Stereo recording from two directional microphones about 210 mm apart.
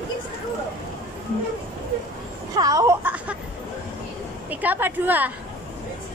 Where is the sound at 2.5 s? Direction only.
15° right (ahead or behind).